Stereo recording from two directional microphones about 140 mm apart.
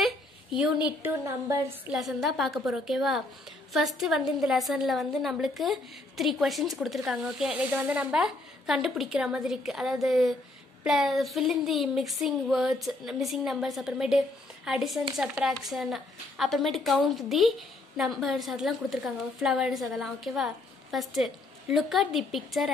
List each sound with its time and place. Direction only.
0.0 s a sound: 5° right (ahead or behind)
1.0 s a woman's voice: 20° right (ahead or behind)
1.9 s speech: centre (ahead or behind)